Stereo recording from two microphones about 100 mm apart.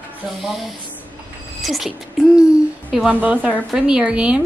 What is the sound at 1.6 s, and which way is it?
Speech, centre (ahead or behind).